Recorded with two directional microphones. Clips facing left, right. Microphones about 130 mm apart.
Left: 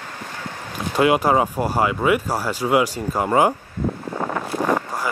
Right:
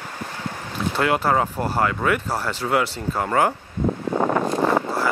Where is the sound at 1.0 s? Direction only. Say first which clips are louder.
Left 4 dB; 15° left (ahead or behind).